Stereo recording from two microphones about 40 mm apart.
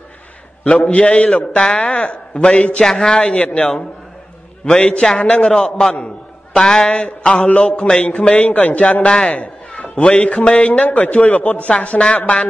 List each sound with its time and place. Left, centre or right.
0.7 s a man's voice: left
2.8 s a man's voice: centre
3.1 s speech: left
5.5 s a man's voice: centre
6.9 s a man's voice: left
8.4 s a man's voice: left
9.3 s cat: left
10.1 s speech: left
10.7 s a man's voice: left